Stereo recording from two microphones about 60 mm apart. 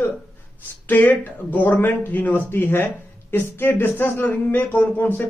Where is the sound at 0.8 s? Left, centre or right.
Left.